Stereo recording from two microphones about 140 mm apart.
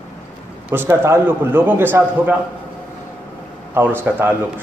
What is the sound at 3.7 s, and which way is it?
Speech, 15° right (ahead or behind).